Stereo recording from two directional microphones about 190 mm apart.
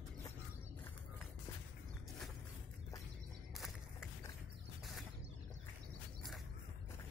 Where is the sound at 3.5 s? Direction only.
Centre (ahead or behind).